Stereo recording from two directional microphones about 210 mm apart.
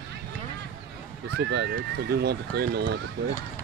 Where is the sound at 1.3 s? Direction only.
55° right (ahead or behind).